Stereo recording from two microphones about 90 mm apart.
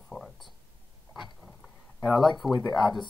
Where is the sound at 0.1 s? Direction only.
30° left (ahead or behind).